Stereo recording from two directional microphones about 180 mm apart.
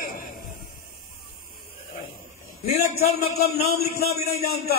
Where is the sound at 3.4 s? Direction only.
60° left (ahead or behind).